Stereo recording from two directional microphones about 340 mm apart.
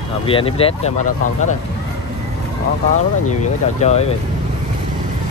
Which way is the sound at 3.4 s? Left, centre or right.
Centre.